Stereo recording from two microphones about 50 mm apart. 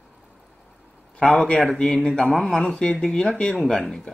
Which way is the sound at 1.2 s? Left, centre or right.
Centre.